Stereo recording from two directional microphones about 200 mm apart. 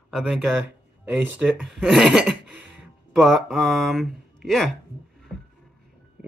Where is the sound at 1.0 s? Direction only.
10° right (ahead or behind).